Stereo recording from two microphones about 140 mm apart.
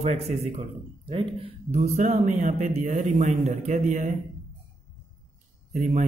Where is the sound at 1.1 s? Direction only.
40° right (ahead or behind); by 4.1 s 60° right (ahead or behind).